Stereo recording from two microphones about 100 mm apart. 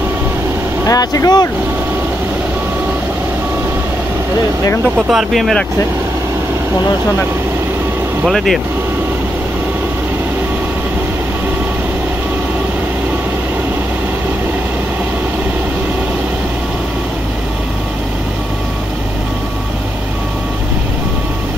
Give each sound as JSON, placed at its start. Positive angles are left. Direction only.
{"t": 0.8, "sound": "speech", "side_deg": 40}
{"t": 5.1, "sound": "speech", "side_deg": 0}
{"t": 8.3, "sound": "speech", "side_deg": 0}